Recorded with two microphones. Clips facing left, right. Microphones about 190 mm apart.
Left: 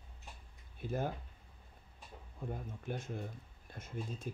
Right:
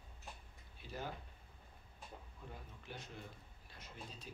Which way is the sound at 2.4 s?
50° left (ahead or behind).